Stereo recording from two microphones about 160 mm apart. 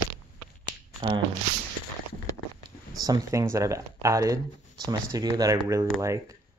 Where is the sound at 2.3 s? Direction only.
20° left (ahead or behind).